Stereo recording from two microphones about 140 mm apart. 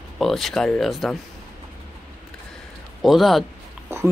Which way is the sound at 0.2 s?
Centre (ahead or behind).